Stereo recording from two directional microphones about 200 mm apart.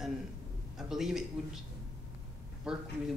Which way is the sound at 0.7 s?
Centre (ahead or behind).